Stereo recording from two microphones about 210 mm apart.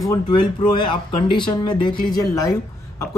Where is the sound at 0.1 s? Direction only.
20° left (ahead or behind).